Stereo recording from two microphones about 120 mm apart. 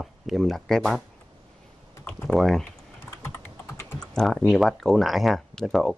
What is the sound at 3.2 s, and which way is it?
Computer keyboard, 20° left (ahead or behind).